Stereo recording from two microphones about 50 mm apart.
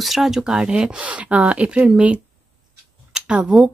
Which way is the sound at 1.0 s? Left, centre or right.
Right.